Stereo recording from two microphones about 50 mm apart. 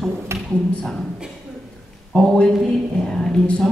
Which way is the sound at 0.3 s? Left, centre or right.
Right.